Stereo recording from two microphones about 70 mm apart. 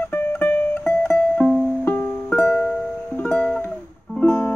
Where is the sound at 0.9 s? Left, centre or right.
Centre.